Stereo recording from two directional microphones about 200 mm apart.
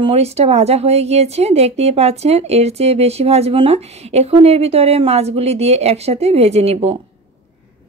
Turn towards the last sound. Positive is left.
turn(degrees=-30)  # may be behind; listen again after turning